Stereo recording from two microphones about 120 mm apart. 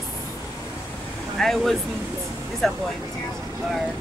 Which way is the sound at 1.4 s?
5° left (ahead or behind).